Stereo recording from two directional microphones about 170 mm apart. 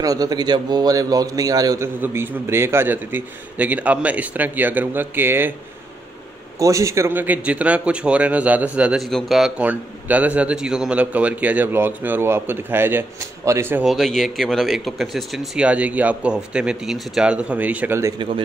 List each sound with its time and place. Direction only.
0.0 s a man's voice: 20° right (ahead or behind)
6.6 s a man's voice: 20° right (ahead or behind)
13.8 s speech: centre (ahead or behind)